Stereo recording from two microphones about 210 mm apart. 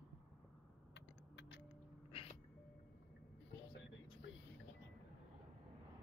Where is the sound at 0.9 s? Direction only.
60° left (ahead or behind).